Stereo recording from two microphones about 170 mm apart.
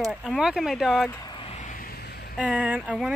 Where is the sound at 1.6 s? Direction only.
50° left (ahead or behind); by 2.3 s 70° left (ahead or behind).